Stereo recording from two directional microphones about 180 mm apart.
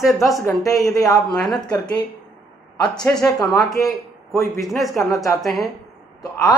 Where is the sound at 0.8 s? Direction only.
20° left (ahead or behind).